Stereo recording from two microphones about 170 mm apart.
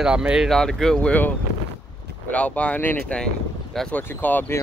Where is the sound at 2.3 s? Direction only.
10° left (ahead or behind).